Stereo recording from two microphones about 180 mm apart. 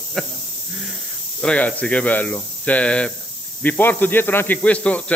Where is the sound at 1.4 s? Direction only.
5° left (ahead or behind).